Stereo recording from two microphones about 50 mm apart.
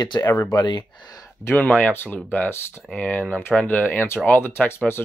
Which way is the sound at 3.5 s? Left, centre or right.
Left.